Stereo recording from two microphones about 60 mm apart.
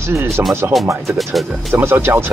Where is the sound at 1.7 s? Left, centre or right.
Right.